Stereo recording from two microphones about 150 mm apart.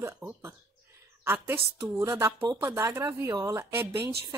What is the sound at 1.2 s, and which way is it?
A woman's voice, 15° right (ahead or behind).